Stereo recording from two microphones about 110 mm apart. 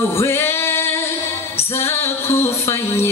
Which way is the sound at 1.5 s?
20° left (ahead or behind).